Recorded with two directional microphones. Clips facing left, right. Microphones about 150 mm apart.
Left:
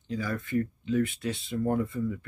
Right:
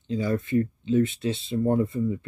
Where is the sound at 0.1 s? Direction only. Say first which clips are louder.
Right 6 dB; 25° right (ahead or behind).